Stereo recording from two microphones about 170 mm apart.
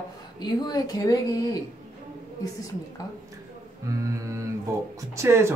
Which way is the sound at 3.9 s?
20° right (ahead or behind).